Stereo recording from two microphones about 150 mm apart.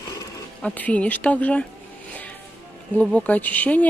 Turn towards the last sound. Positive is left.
turn(degrees=10)  # may be behind; listen again after turning